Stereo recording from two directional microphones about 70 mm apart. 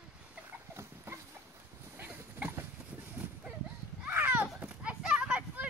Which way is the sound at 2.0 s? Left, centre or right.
Right.